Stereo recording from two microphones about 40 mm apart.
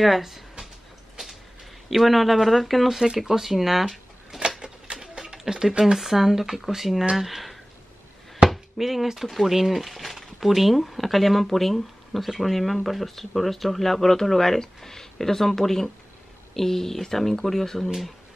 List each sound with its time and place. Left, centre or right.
0.0 s speech: centre
1.9 s speech: centre
4.5 s a sound: centre
5.4 s speech: centre